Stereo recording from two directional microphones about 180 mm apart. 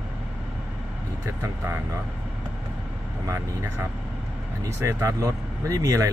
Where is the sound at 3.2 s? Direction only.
15° right (ahead or behind).